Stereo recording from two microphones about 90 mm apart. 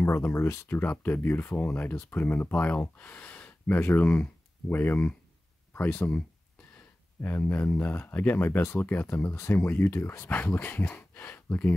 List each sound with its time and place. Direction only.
0.0 s speech: 25° left (ahead or behind); by 6.2 s 10° left (ahead or behind)
7.2 s speech: 25° left (ahead or behind)